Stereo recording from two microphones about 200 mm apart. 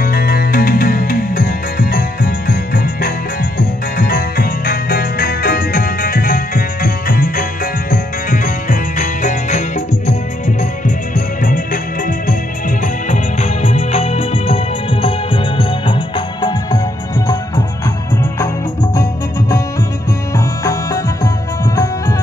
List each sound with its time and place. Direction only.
0.0 s music: 50° left (ahead or behind); by 16.8 s 20° left (ahead or behind)
20.3 s music: 15° left (ahead or behind)